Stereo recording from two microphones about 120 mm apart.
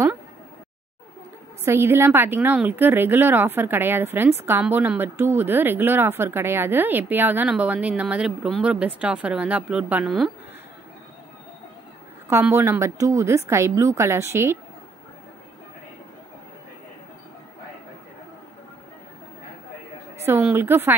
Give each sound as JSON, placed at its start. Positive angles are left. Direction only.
{"t": 1.6, "sound": "a woman's voice", "side_deg": -20}
{"t": 12.3, "sound": "a woman's voice", "side_deg": -20}
{"t": 20.5, "sound": "a woman's voice", "side_deg": -20}